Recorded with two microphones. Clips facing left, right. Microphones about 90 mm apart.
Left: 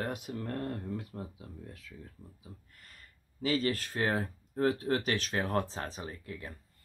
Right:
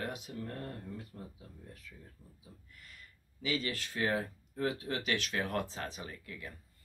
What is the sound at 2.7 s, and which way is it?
Speech, 40° left (ahead or behind).